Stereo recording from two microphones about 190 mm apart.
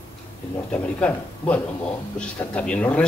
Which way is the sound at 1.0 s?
5° left (ahead or behind).